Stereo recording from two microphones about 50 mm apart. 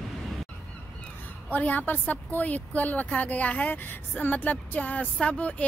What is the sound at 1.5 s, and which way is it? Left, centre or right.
A woman's voice, left.